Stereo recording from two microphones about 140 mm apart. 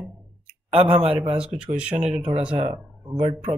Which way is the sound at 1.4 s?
5° right (ahead or behind).